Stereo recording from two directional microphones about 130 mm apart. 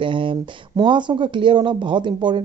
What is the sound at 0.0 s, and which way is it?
Speech, 40° right (ahead or behind).